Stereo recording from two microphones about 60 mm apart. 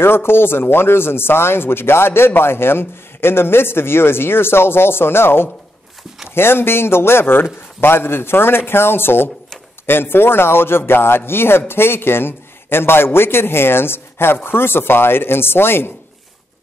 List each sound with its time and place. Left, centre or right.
0.0 s a man's voice: left